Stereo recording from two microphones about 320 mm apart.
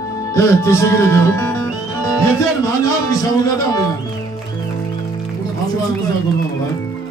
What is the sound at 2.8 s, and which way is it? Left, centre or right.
Speech, centre.